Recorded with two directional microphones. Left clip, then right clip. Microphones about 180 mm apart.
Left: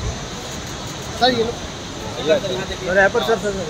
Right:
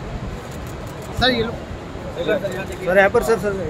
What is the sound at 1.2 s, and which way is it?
Speech, 25° right (ahead or behind).